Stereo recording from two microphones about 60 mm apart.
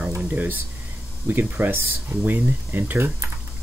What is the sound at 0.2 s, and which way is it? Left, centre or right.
Speech, right.